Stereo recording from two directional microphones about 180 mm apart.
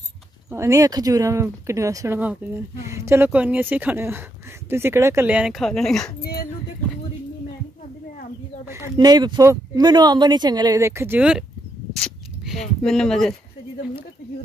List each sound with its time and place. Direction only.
0.5 s speech: 15° right (ahead or behind); by 6.1 s centre (ahead or behind)
8.6 s speech: 15° right (ahead or behind)
11.9 s a sound: centre (ahead or behind)